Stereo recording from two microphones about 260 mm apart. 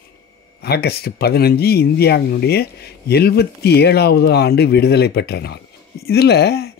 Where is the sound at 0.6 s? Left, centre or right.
Left.